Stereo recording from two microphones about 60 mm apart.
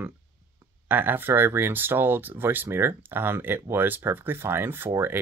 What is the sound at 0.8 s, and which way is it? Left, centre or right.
Speech, right.